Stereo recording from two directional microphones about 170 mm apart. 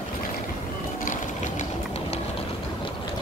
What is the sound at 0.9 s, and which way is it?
Sewing machine, 50° left (ahead or behind).